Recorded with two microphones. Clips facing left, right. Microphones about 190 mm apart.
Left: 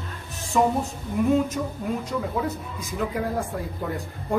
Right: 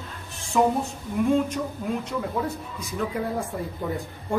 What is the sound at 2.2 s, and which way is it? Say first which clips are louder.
Speech: left 1 dB; centre (ahead or behind).